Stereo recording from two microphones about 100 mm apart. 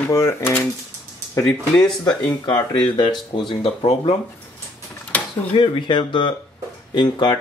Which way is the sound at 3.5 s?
80° left.